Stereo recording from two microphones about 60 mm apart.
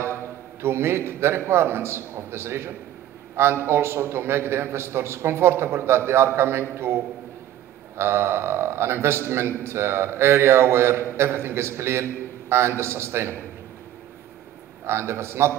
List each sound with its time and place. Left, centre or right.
0.1 s a man's voice: right
8.0 s a man's voice: right
14.9 s a man's voice: right